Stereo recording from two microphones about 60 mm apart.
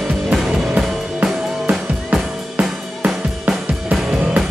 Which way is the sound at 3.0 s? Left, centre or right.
Right.